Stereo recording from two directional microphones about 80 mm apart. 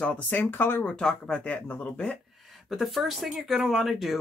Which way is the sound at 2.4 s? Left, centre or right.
Centre.